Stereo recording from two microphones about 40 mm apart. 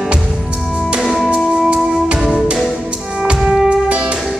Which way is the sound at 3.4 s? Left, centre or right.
Centre.